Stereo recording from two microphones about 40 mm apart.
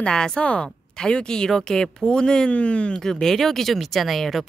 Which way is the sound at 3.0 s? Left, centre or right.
Centre.